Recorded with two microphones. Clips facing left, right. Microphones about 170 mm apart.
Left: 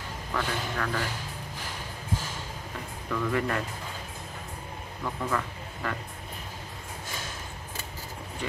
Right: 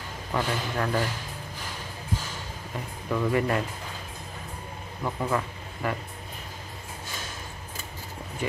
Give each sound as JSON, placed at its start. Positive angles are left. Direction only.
{"t": 0.3, "sound": "a man's voice", "side_deg": -25}
{"t": 3.1, "sound": "a man's voice", "side_deg": -20}
{"t": 5.0, "sound": "speech", "side_deg": -15}